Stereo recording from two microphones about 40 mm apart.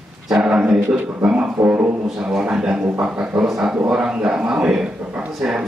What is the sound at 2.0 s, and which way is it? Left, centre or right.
Speech, centre.